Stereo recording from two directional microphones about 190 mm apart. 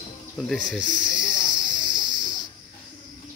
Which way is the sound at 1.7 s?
25° right (ahead or behind).